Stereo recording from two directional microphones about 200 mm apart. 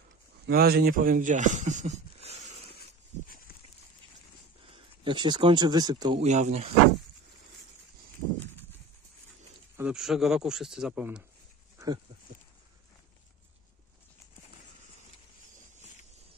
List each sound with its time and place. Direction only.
0.5 s speech: 50° right (ahead or behind); by 2.3 s 35° right (ahead or behind)
4.7 s speech: 25° right (ahead or behind)
6.2 s speech: 35° right (ahead or behind)
9.8 s a man's voice: 5° right (ahead or behind)
11.8 s a sound: 15° right (ahead or behind)